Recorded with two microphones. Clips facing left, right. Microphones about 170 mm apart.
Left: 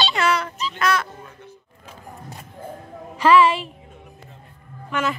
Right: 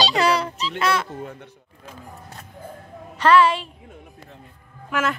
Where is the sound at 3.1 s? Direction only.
5° left (ahead or behind).